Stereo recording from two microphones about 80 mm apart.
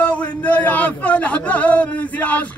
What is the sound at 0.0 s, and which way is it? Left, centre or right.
Speech, centre.